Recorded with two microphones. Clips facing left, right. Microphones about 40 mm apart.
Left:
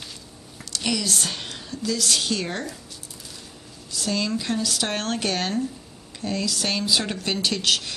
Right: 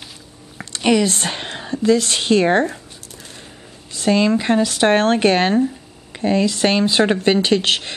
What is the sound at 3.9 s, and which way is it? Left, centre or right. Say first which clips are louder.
Speech: right 10 dB; right.